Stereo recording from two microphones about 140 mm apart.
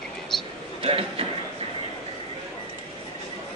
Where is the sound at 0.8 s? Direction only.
40° right (ahead or behind).